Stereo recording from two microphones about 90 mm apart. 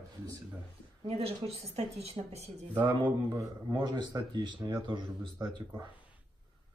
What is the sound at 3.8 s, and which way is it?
Speech, 50° right (ahead or behind).